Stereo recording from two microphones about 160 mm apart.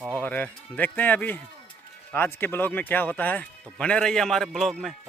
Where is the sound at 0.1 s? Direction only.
10° left (ahead or behind).